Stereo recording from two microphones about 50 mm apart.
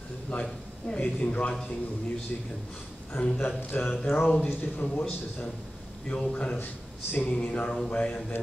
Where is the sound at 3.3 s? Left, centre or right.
Left.